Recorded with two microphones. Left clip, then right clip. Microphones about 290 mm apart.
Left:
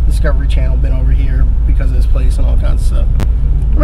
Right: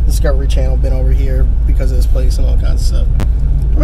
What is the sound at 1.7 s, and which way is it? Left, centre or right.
Speech, centre.